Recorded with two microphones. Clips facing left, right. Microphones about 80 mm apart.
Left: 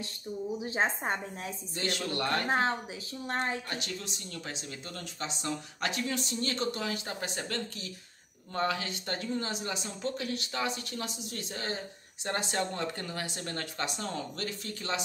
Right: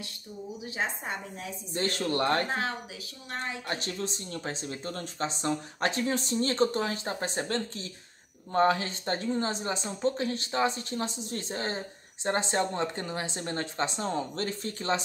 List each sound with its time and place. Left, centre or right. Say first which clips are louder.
0.7 s a woman's voice: left 2 dB; left
1.7 s speech: right 5 dB; right
3.3 s a woman's voice: left 3 dB; left
3.6 s speech: right 5 dB; right